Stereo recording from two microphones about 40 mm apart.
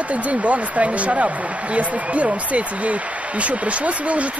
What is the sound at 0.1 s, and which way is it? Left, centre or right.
Speech, right.